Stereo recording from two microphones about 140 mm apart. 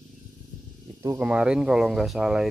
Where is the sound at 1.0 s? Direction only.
20° right (ahead or behind).